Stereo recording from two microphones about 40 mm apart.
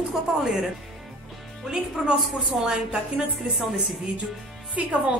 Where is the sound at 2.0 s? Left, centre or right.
Right.